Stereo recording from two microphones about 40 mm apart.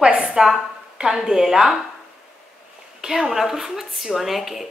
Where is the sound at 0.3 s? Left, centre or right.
Centre.